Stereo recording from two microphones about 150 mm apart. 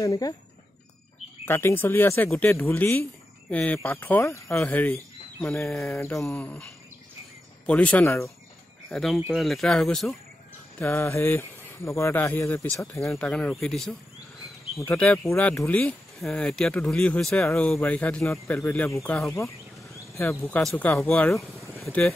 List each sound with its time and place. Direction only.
0.0 s a sound: 20° left (ahead or behind)
1.4 s speech: 15° left (ahead or behind)
5.8 s a sound: 20° left (ahead or behind)
6.4 s speech: 15° left (ahead or behind)
8.9 s speech: centre (ahead or behind)
10.8 s speech: 15° left (ahead or behind)
13.3 s speech: 5° left (ahead or behind)
19.4 s a sound: centre (ahead or behind)
20.2 s speech: 10° left (ahead or behind)